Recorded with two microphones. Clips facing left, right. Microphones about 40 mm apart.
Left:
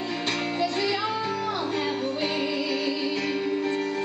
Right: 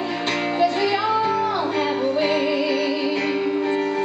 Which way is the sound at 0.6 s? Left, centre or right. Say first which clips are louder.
Right 8 dB; centre.